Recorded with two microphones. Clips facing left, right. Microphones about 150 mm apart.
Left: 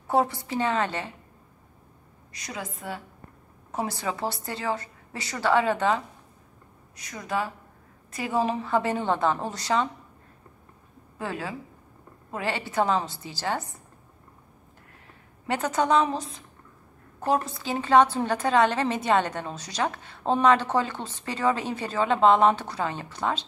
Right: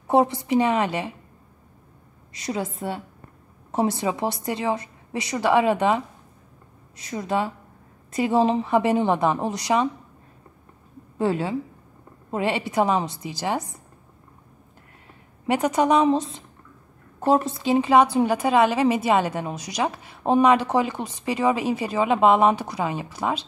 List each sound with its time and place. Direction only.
0.1 s a woman's voice: 20° right (ahead or behind)
2.3 s a woman's voice: 30° right (ahead or behind)
7.0 s a woman's voice: 25° right (ahead or behind)
11.1 s a woman's voice: 25° right (ahead or behind)
15.4 s a woman's voice: 15° right (ahead or behind)
16.1 s a woman's voice: 25° right (ahead or behind); by 23.4 s 10° right (ahead or behind)